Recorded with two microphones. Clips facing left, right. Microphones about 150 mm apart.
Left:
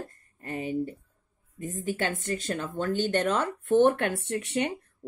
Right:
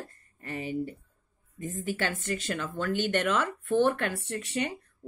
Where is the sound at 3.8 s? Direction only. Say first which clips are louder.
Left 4 dB; 50° left (ahead or behind).